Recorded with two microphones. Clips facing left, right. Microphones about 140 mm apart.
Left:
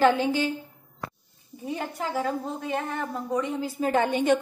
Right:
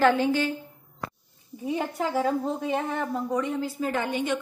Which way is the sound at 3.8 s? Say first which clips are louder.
Left 7 dB; 30° left (ahead or behind).